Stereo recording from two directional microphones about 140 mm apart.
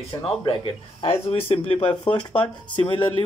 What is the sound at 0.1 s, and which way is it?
Speech, 25° left (ahead or behind).